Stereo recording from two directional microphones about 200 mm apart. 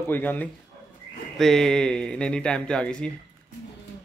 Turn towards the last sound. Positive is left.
turn(degrees=5)  # may be behind; listen again after turning